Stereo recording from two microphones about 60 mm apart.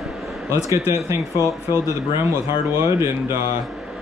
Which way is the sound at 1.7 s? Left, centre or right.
Left.